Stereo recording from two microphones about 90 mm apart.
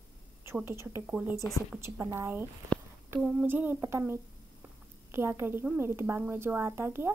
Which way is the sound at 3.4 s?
20° right (ahead or behind).